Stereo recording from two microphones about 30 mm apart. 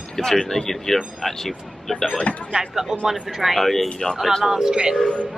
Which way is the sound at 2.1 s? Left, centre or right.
Left.